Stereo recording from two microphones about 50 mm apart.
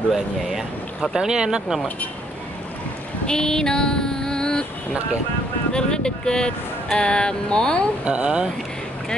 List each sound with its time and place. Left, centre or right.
0.1 s speech: centre
3.3 s female singing: centre
5.7 s speech: centre
8.0 s speech: right